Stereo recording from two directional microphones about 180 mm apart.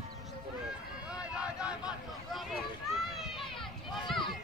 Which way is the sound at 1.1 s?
5° right (ahead or behind).